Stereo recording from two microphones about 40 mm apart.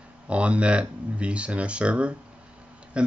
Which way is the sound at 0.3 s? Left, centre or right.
Right.